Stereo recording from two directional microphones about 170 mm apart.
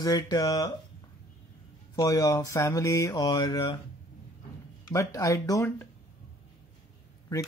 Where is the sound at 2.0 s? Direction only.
20° left (ahead or behind).